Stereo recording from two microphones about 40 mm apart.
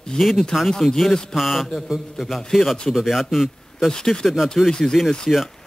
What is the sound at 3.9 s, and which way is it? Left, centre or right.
Speech, centre.